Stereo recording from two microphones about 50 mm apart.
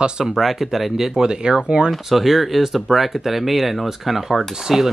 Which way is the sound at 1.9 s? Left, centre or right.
Centre.